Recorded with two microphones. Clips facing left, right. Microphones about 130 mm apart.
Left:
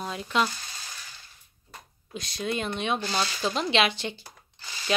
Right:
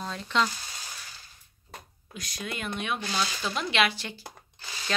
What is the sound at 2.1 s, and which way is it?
Speech, 30° left (ahead or behind).